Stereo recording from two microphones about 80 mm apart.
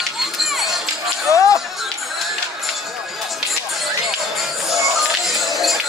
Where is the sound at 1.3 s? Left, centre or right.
Left.